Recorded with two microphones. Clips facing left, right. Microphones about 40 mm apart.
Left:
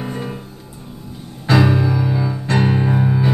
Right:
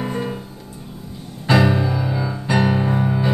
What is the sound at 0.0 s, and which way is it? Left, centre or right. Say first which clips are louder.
Music: right 2 dB; centre.